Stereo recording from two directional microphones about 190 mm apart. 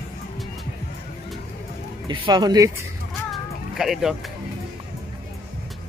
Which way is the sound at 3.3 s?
Centre (ahead or behind).